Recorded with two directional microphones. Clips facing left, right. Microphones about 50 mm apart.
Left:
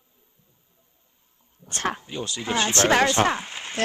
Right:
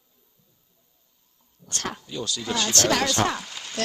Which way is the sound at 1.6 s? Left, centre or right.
Left.